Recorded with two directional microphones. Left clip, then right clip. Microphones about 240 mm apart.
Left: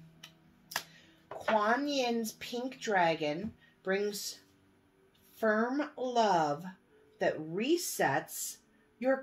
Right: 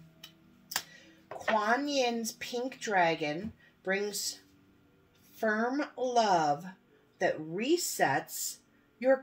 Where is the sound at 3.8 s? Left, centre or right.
Centre.